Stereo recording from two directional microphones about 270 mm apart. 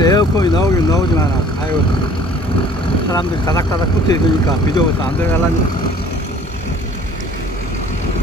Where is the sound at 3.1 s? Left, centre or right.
Centre.